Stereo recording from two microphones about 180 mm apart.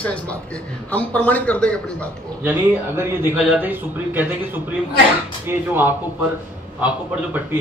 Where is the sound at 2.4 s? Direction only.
10° right (ahead or behind).